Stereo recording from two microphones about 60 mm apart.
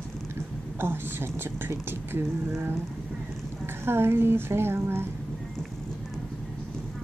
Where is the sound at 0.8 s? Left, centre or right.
Right.